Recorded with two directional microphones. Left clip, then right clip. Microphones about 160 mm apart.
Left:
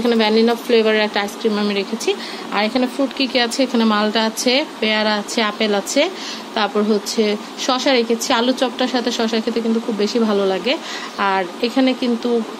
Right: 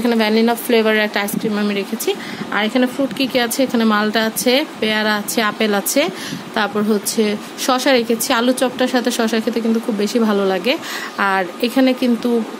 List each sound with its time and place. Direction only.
0.0 s speech: 30° right (ahead or behind)
1.5 s speech: 20° right (ahead or behind); by 12.3 s 45° right (ahead or behind)